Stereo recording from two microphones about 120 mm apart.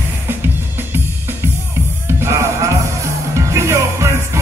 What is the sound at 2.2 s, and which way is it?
Music, 25° right (ahead or behind).